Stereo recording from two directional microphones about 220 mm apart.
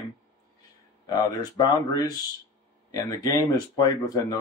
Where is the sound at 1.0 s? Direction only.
15° left (ahead or behind).